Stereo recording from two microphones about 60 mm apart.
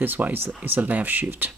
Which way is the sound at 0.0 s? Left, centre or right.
Right.